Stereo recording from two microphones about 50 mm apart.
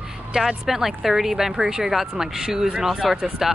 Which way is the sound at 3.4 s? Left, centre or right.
Centre.